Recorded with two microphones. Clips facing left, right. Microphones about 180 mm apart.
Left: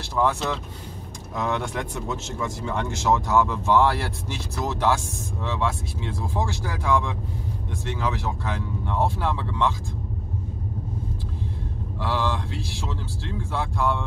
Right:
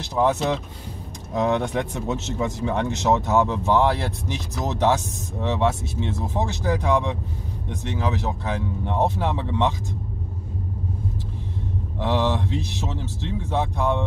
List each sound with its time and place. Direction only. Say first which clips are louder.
0.0 s speech: right 3 dB; 20° right (ahead or behind)
12.0 s speech: right 4 dB; 20° right (ahead or behind)